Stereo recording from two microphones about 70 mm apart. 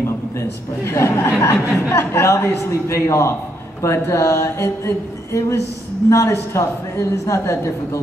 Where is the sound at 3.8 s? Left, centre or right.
Left.